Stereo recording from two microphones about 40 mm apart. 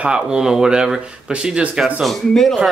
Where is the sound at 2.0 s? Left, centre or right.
Centre.